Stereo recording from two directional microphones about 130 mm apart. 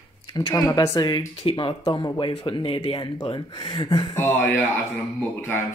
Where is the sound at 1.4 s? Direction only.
45° left (ahead or behind).